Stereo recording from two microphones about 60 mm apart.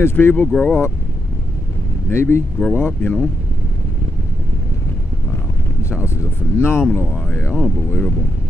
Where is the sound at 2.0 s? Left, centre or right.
Left.